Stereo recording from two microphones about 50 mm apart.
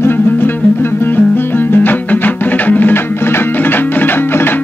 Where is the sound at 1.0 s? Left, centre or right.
Left.